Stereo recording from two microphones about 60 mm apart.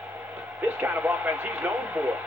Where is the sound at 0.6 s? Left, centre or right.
Right.